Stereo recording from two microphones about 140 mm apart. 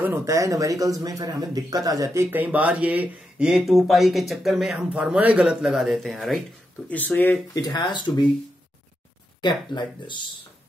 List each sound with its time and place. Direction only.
0.0 s a man's voice: 20° right (ahead or behind)
2.3 s speech: 10° right (ahead or behind); by 7.3 s 10° left (ahead or behind)
7.5 s speech: 30° left (ahead or behind)
9.4 s speech: 35° left (ahead or behind)